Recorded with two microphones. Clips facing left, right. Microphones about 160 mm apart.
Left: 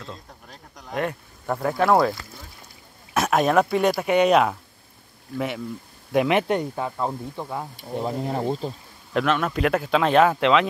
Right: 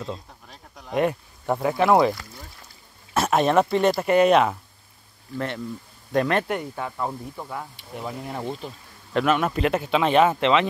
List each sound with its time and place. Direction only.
0.5 s a sound: centre (ahead or behind)
1.5 s speech: 5° right (ahead or behind)
3.2 s speech: centre (ahead or behind)
6.1 s speech: 15° left (ahead or behind)
7.7 s speech: 35° left (ahead or behind)
9.1 s speech: 5° right (ahead or behind)